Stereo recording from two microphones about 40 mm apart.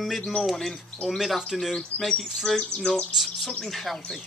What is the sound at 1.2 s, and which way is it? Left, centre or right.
Speech, centre.